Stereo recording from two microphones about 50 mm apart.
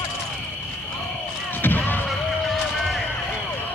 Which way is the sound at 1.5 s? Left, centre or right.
Left.